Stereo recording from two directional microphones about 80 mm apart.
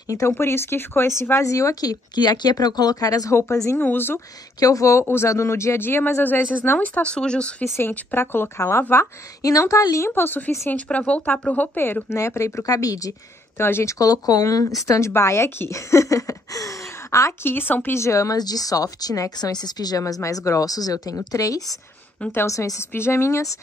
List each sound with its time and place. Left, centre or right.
0.3 s speech: left
3.8 s speech: left
4.6 s speech: left
7.0 s speech: centre
7.9 s speech: left
8.9 s speech: left
13.6 s speech: left
13.9 s speech: left
18.4 s speech: left
22.3 s speech: left